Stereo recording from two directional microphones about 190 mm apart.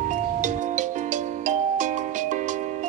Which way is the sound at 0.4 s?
40° right (ahead or behind).